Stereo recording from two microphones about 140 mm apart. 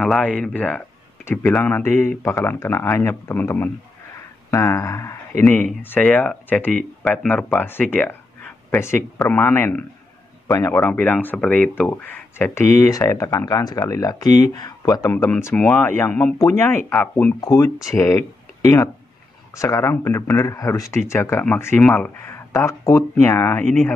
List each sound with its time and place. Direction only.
0.0 s speech: 5° left (ahead or behind)
10.8 s speech: 10° left (ahead or behind)
15.1 s speech: 10° left (ahead or behind)
17.4 s speech: 25° left (ahead or behind)